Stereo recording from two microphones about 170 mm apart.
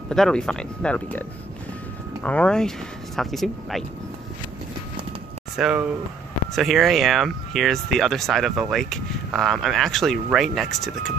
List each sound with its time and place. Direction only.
0.1 s speech: 5° left (ahead or behind)
2.2 s speech: 5° left (ahead or behind)
5.6 s speech: 5° right (ahead or behind)